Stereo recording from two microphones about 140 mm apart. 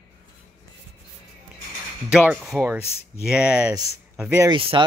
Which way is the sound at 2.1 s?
10° right (ahead or behind).